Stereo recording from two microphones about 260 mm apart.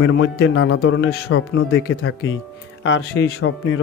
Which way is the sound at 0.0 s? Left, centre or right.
Left.